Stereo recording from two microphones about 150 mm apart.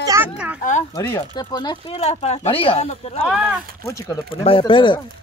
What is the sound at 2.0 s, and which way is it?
Speech, 45° left (ahead or behind).